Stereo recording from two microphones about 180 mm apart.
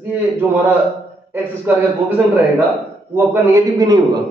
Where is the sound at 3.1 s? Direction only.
15° right (ahead or behind).